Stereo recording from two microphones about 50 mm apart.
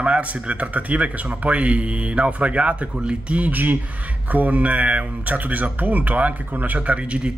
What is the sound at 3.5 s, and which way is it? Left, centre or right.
Speech, right.